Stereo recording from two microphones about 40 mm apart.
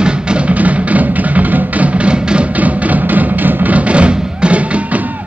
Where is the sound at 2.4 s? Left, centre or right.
Right.